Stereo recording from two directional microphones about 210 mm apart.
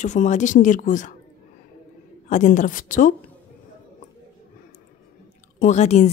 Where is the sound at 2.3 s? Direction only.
35° left (ahead or behind).